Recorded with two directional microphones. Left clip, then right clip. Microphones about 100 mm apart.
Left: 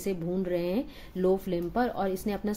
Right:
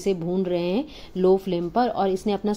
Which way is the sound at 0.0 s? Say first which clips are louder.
Right 7 dB; 25° right (ahead or behind).